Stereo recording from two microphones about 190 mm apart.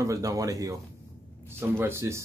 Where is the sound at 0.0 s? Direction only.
15° right (ahead or behind).